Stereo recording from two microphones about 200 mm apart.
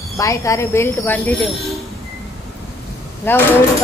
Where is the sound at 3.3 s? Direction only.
10° left (ahead or behind).